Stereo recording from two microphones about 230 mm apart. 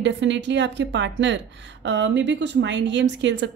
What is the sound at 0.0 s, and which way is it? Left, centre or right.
A woman's voice, right.